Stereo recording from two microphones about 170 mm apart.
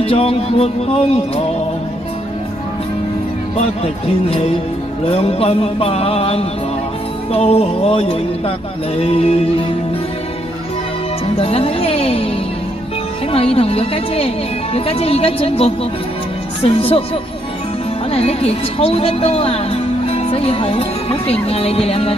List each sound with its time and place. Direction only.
0.0 s speech: 35° left (ahead or behind)
3.5 s speech: 35° left (ahead or behind)
11.3 s speech: 35° left (ahead or behind)
13.3 s a woman's voice: 35° left (ahead or behind)